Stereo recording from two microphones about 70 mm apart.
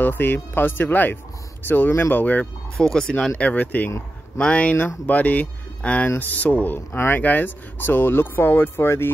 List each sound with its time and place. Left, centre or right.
0.0 s speech: left
2.8 s speech: centre
3.3 s speech: left